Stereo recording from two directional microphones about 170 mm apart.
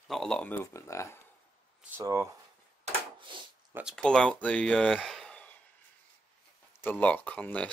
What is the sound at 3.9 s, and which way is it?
Speech, 5° left (ahead or behind).